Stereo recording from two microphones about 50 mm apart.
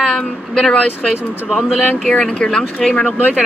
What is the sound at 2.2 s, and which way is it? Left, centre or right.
Speech, centre.